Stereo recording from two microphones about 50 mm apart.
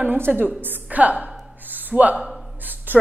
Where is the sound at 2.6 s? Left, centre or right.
Right.